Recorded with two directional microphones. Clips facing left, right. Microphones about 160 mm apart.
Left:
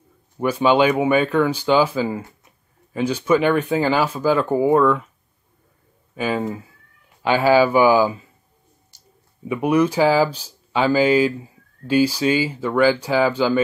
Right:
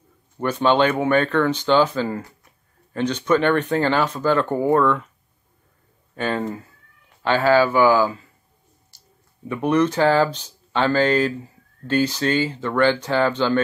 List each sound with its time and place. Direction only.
0.4 s speech: 10° left (ahead or behind)
6.1 s speech: 5° left (ahead or behind)
8.9 s a sound: 15° left (ahead or behind)
9.5 s speech: 10° left (ahead or behind)